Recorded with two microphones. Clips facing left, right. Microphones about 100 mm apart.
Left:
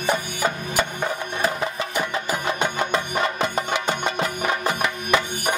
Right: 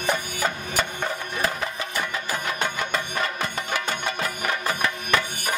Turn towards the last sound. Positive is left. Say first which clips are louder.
# left 3 dB
turn(degrees=20)  # may be behind; listen again after turning